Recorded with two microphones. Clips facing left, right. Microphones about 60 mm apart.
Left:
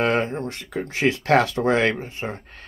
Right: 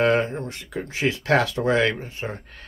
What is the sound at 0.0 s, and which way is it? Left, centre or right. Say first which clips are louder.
Speech: right 1 dB; left.